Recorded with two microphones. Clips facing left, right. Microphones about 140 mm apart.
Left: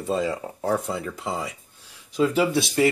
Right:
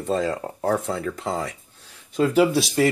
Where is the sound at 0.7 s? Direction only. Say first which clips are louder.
Right 2 dB; centre (ahead or behind).